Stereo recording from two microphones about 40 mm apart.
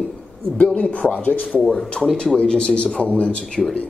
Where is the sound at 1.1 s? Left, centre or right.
Left.